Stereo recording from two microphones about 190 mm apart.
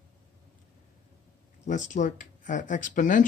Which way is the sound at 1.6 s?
40° left (ahead or behind).